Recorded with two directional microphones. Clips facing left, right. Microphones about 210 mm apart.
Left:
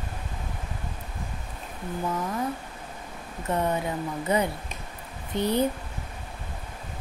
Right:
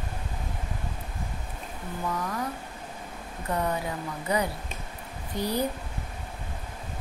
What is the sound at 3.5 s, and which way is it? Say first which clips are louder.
Speech: left 3 dB; 25° left (ahead or behind).